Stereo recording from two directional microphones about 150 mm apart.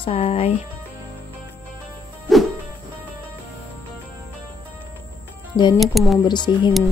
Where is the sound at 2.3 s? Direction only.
Centre (ahead or behind).